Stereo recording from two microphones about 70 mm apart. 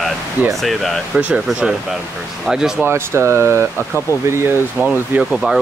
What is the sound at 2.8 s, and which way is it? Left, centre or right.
Speech, right.